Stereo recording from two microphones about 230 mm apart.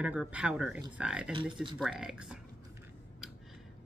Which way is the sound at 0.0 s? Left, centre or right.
Centre.